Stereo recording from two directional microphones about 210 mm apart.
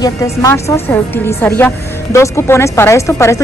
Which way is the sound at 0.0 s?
15° left (ahead or behind).